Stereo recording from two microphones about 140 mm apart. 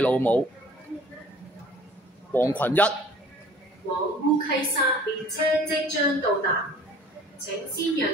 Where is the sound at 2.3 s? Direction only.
15° left (ahead or behind).